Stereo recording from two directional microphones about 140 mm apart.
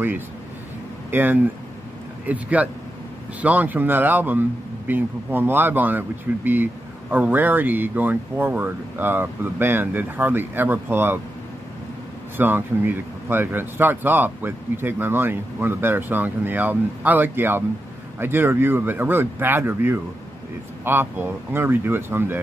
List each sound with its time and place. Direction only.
1.1 s speech: 15° right (ahead or behind)
12.4 s speech: 15° right (ahead or behind)